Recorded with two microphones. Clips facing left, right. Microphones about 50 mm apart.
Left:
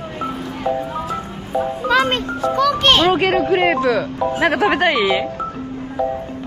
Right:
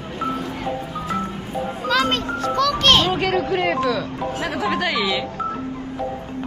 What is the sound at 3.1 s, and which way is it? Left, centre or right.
Speech, left.